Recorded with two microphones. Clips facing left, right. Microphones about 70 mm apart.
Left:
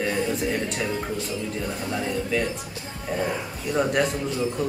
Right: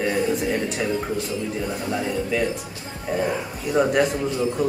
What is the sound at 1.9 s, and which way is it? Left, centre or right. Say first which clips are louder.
A man's voice: right 1 dB; centre.